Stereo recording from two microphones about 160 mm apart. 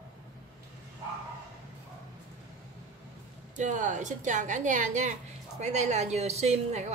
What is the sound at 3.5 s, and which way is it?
A woman's voice, 50° right (ahead or behind).